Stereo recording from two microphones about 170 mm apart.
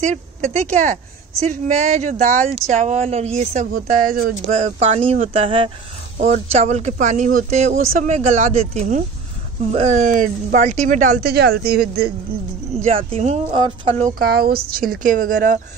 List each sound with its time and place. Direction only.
0.0 s speech: 45° right (ahead or behind)
4.6 s speech: 40° right (ahead or behind); by 12.1 s 65° right (ahead or behind)
12.7 s speech: 35° right (ahead or behind)
14.1 s a woman's voice: 65° right (ahead or behind)